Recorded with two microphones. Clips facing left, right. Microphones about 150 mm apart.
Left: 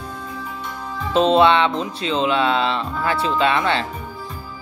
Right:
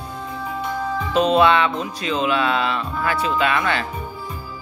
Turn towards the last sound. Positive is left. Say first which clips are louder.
# left 2 dB
turn(degrees=25)  # may be behind; listen again after turning